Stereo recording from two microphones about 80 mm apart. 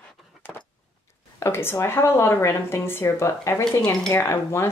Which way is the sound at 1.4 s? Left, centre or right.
Left.